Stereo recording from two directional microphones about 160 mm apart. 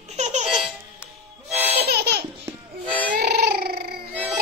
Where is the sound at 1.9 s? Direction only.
90° right.